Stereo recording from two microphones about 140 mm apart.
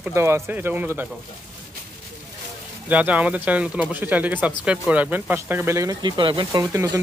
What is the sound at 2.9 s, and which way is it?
Speech, 10° right (ahead or behind).